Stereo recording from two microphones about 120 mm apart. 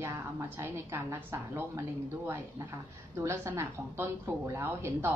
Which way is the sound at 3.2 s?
25° right (ahead or behind).